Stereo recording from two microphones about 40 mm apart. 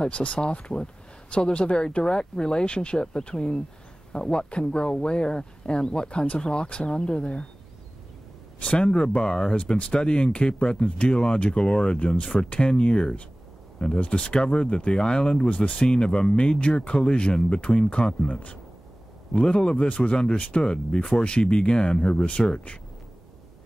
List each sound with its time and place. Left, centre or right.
0.0 s speech: left
8.5 s speech: left
15.5 s speech: left
15.9 s speech: left
20.3 s speech: left
20.6 s speech: left